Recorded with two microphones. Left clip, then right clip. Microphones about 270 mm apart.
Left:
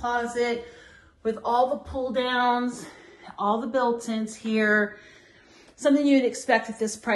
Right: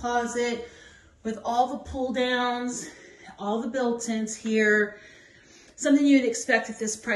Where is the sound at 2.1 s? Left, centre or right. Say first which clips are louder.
Even; left.